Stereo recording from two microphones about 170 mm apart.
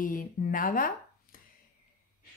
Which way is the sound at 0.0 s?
55° left (ahead or behind).